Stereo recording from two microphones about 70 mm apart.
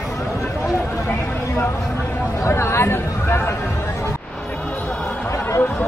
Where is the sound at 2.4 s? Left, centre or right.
Left.